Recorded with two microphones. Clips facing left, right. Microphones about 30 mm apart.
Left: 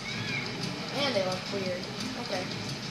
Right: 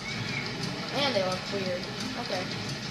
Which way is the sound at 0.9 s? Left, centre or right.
Right.